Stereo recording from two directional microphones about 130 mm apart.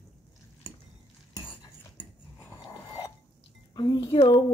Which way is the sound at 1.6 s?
20° left (ahead or behind).